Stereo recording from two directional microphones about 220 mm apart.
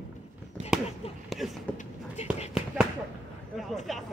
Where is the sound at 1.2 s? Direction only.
Centre (ahead or behind).